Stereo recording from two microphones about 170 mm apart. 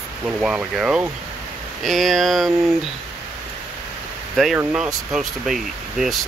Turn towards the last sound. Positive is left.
turn(degrees=0)  # may be behind; listen again after turning